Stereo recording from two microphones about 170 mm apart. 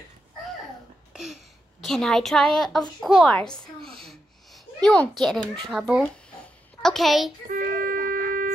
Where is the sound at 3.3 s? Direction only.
5° left (ahead or behind).